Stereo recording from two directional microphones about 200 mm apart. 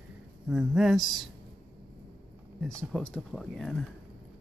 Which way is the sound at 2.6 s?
5° left (ahead or behind).